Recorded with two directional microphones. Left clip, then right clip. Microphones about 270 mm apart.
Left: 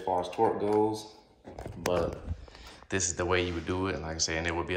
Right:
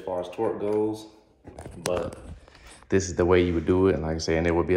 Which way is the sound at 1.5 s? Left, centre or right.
Left.